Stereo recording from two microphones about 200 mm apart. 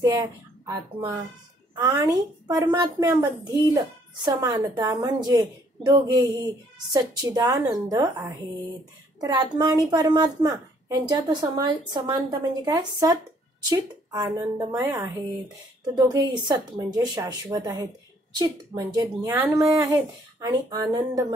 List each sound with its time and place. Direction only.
0.0 s a child's voice: 20° right (ahead or behind)